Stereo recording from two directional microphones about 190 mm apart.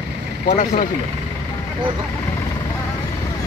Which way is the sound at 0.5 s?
40° left (ahead or behind).